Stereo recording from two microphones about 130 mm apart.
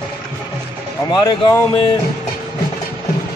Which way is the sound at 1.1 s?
35° left (ahead or behind).